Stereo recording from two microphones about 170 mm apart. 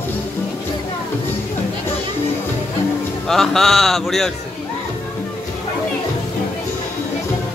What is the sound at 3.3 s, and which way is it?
A man's voice, centre (ahead or behind).